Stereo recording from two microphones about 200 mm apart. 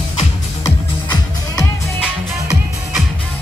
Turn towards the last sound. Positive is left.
turn(degrees=-5)  # may be behind; listen again after turning